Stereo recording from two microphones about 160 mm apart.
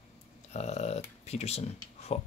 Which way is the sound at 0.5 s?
45° left (ahead or behind).